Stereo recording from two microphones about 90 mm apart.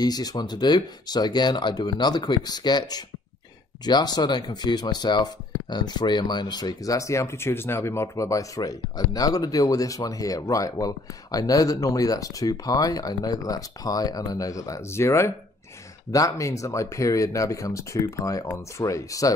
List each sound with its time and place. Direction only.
0.0 s speech: 45° left (ahead or behind)